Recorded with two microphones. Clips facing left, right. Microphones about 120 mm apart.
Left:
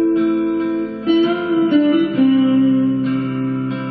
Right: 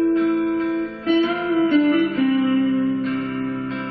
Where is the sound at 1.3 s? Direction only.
5° left (ahead or behind).